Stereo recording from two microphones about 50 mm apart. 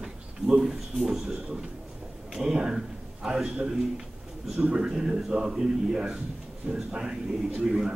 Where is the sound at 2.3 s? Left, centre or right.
Centre.